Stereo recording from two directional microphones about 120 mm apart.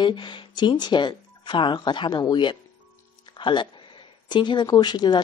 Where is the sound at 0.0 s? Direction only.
40° left (ahead or behind).